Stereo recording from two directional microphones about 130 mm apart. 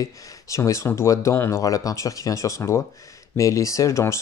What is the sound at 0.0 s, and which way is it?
Speech, 25° left (ahead or behind).